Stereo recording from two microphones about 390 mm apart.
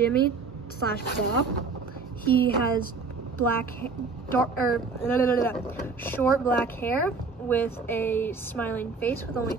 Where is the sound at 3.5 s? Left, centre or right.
Centre.